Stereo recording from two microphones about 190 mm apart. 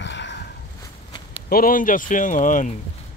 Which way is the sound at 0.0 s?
70° left (ahead or behind).